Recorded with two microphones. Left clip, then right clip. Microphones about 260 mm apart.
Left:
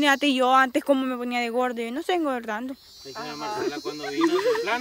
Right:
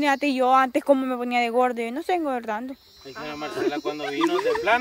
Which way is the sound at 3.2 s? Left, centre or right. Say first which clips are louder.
Right 1 dB; centre.